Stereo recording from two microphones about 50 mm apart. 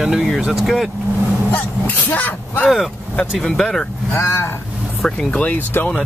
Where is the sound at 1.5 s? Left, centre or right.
Left.